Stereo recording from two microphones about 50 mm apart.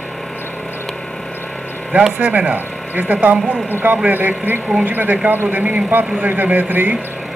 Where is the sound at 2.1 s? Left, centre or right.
Right.